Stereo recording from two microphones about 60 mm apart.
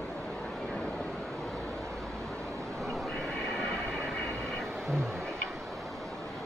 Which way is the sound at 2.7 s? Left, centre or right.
Centre.